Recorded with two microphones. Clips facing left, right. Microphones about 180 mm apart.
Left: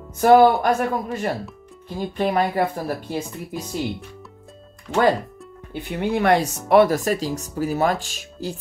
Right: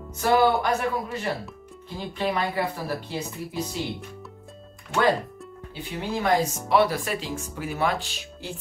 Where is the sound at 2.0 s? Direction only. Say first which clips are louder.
Left 6 dB; 45° left (ahead or behind).